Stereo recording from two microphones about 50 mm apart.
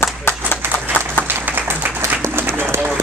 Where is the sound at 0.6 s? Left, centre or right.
Right.